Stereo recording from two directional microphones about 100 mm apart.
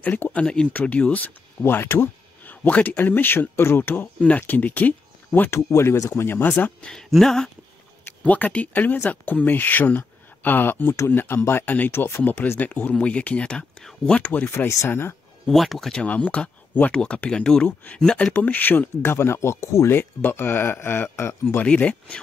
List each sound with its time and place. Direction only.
0.0 s speech: 15° left (ahead or behind)
5.7 s speech: 30° left (ahead or behind)
6.9 s speech: 5° left (ahead or behind); by 15.1 s 25° left (ahead or behind)
15.4 s speech: centre (ahead or behind); by 21.6 s 25° left (ahead or behind)
21.6 s speech: 10° left (ahead or behind)